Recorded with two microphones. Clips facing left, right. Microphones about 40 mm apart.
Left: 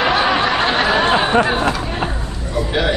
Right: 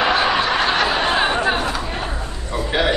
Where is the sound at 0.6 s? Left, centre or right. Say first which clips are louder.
Left 2 dB; left.